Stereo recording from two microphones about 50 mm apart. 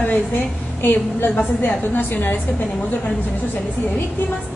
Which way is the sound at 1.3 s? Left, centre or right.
Left.